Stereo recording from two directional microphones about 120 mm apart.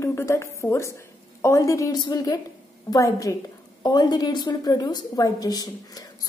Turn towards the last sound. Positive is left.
turn(degrees=30)  # may be behind; listen again after turning